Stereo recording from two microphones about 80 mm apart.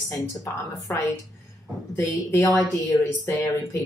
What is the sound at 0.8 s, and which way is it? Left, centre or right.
Speech, left.